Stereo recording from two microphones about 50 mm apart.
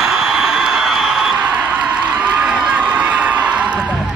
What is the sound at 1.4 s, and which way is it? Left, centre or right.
Crowd, right.